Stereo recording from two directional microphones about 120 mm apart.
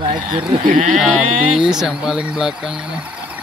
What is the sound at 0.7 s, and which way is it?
Speech, 90° right.